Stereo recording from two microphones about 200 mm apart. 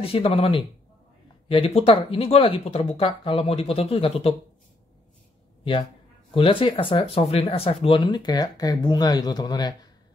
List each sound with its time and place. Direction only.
0.0 s speech: 30° left (ahead or behind)
5.6 s speech: 25° left (ahead or behind)